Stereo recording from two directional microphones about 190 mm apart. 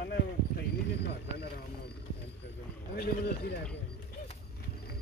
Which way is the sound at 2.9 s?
55° left (ahead or behind).